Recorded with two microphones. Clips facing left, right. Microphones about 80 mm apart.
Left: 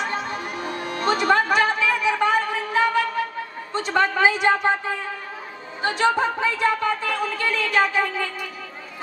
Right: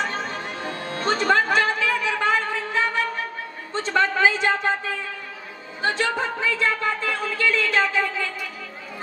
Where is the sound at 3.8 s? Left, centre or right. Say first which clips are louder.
Left 1 dB; left.